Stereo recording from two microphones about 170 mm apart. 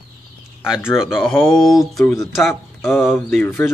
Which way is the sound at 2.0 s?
20° left (ahead or behind).